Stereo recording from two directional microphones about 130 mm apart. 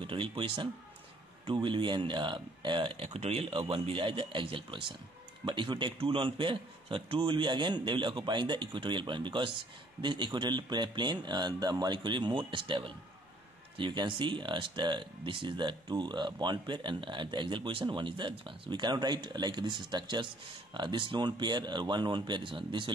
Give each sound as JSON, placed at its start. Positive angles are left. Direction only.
{"t": 0.0, "sound": "speech", "side_deg": -40}